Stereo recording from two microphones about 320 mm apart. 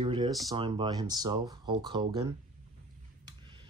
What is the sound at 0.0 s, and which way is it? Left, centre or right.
Speech, centre.